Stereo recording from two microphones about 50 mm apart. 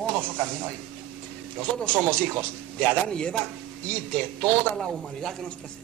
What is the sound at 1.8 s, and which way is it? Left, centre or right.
Speech, centre.